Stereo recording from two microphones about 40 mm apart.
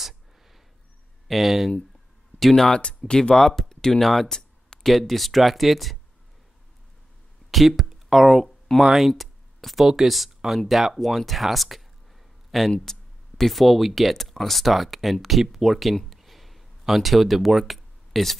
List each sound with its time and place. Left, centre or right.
1.2 s speech: centre
2.7 s speech: left
3.3 s speech: centre
4.0 s speech: centre
4.3 s a sound: centre
4.9 s speech: centre
7.5 s speech: centre
12.4 s a sound: centre
13.4 s speech: centre
16.1 s a sound: centre